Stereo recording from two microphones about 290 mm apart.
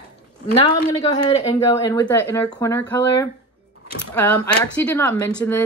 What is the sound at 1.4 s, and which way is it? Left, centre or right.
Speech, centre.